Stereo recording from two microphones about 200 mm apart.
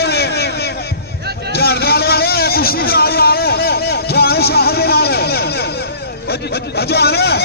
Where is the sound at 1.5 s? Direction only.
50° left (ahead or behind).